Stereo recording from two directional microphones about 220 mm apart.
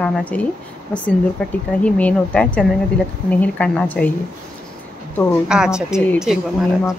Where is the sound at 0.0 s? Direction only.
5° left (ahead or behind).